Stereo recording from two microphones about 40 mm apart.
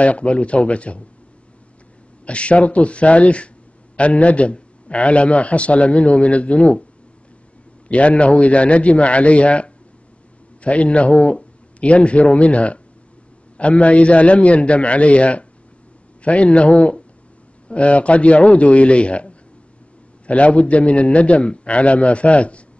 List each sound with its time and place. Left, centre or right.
0.0 s a man's voice: left
2.2 s a man's voice: left
7.9 s a man's voice: left